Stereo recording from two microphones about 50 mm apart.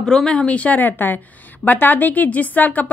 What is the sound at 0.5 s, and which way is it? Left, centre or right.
A woman's voice, left.